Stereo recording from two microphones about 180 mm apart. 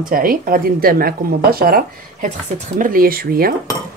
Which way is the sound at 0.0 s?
50° right (ahead or behind).